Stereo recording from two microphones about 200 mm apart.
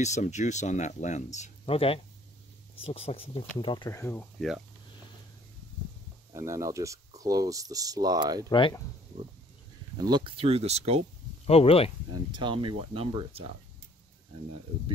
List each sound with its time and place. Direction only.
0.0 s speech: 35° left (ahead or behind); by 4.3 s 15° left (ahead or behind)
6.3 s speech: 15° right (ahead or behind)
8.5 s speech: 20° left (ahead or behind)
9.9 s speech: 20° right (ahead or behind)
11.4 s speech: 30° left (ahead or behind)
12.3 s speech: 25° right (ahead or behind)